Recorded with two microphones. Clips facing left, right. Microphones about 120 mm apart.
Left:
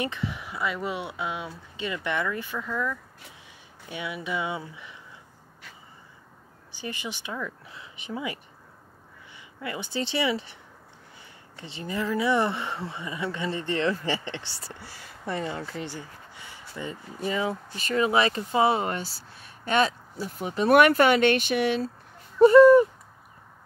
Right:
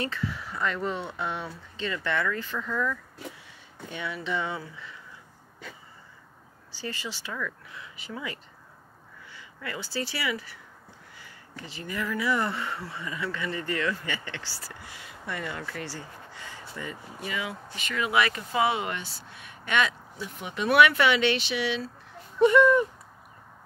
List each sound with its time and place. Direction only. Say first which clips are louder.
0.0 s speech: left 1 dB; 20° left (ahead or behind)
6.7 s speech: left 1 dB; 15° left (ahead or behind)
17.2 s speech: left 7 dB; 35° left (ahead or behind)
22.4 s speech: left 6 dB; 35° left (ahead or behind)